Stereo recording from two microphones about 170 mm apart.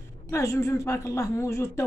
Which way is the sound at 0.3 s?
15° left (ahead or behind).